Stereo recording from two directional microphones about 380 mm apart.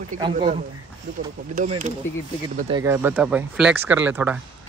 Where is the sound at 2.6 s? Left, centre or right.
Centre.